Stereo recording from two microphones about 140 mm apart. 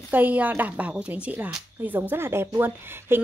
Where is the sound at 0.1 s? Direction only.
10° right (ahead or behind).